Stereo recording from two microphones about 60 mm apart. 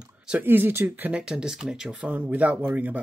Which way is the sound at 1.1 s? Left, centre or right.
Centre.